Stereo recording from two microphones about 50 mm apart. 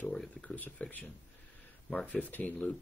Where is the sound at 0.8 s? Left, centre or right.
Left.